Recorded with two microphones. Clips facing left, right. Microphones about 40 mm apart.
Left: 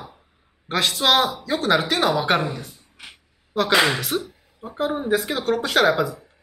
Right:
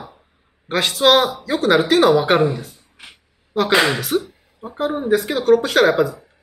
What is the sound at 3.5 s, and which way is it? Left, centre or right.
Speech, centre.